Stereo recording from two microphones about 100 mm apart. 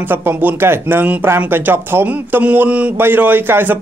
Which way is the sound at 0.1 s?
20° right (ahead or behind).